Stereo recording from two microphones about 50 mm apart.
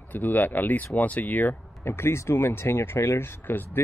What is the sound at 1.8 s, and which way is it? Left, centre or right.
Speech, left.